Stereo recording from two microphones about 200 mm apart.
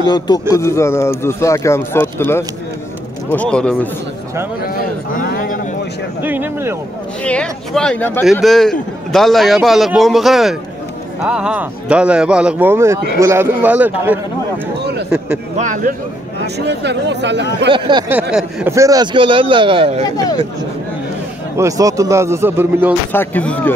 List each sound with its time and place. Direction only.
0.1 s a man's voice: 20° left (ahead or behind)
4.6 s a sound: 50° left (ahead or behind)
6.2 s speech: 10° right (ahead or behind)
7.2 s speech: 5° left (ahead or behind)
14.8 s a sound: 55° right (ahead or behind)
15.0 s speech: 5° right (ahead or behind)
15.5 s a man's voice: 40° right (ahead or behind)
16.5 s speech: 60° right (ahead or behind)
17.7 s a sound: 25° right (ahead or behind)
18.3 s a man's voice: 10° right (ahead or behind)
21.5 s speech: 15° right (ahead or behind)
23.1 s a man's voice: 5° left (ahead or behind)